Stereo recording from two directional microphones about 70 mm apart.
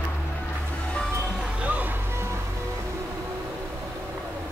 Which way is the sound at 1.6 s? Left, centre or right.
Right.